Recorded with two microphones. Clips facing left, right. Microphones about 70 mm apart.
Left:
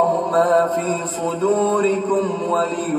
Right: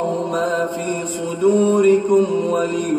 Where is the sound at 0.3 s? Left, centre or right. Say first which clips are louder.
Left 4 dB; left.